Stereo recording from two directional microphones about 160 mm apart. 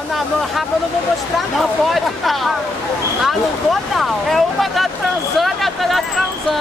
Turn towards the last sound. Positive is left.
turn(degrees=0)  # may be behind; listen again after turning